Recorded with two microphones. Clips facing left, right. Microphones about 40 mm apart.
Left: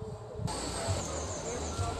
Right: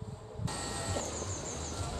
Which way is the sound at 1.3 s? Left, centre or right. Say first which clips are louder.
Left 4 dB; left.